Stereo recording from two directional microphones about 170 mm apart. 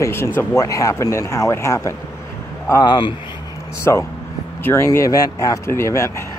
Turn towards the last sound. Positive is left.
turn(degrees=15)  # may be behind; listen again after turning